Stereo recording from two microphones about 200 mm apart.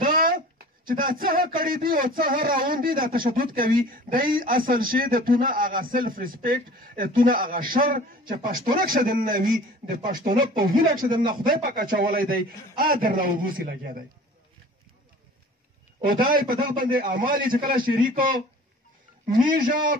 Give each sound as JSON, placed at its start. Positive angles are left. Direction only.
{"t": 0.0, "sound": "a sound", "side_deg": -45}
{"t": 0.8, "sound": "speech", "side_deg": -45}
{"t": 16.9, "sound": "speech", "side_deg": -45}